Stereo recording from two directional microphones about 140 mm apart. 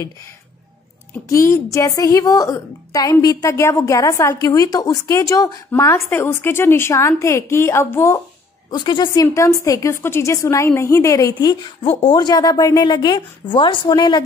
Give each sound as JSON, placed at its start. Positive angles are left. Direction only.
{"t": 1.3, "sound": "a woman's voice", "side_deg": 20}
{"t": 8.6, "sound": "a woman's voice", "side_deg": 30}
{"t": 11.8, "sound": "a woman's voice", "side_deg": 40}